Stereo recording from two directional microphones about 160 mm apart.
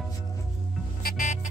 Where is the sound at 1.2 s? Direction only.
45° left (ahead or behind).